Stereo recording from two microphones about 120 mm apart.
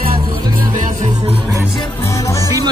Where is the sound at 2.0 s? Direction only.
25° left (ahead or behind).